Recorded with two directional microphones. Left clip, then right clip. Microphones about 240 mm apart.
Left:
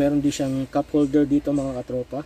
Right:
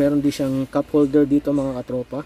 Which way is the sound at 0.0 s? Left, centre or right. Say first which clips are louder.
Right 2 dB; centre.